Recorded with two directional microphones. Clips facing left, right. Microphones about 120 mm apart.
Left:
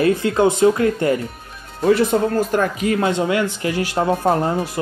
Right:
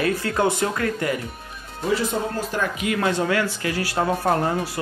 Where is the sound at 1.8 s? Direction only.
65° left (ahead or behind); by 3.1 s 35° left (ahead or behind).